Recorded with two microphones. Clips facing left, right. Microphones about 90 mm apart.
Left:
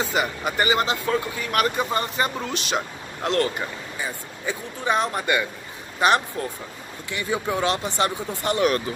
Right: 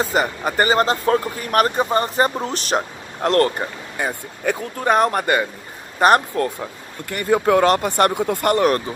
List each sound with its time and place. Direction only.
0.0 s speech: 40° right (ahead or behind); by 8.5 s 60° right (ahead or behind)
8.5 s speech: 40° right (ahead or behind)